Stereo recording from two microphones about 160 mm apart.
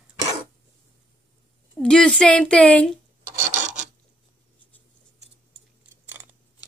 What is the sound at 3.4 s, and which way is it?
Filing, 50° right (ahead or behind).